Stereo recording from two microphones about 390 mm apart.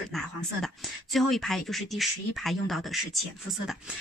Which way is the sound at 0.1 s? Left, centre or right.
Centre.